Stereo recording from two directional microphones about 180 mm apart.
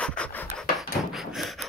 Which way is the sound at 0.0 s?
5° left (ahead or behind).